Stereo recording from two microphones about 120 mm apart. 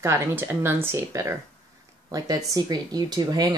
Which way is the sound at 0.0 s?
25° right (ahead or behind).